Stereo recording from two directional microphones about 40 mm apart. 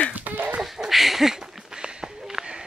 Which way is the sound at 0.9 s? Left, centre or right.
Centre.